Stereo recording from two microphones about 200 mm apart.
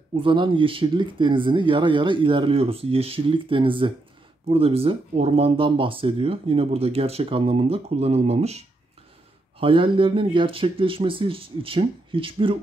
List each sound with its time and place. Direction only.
0.1 s speech: 25° right (ahead or behind)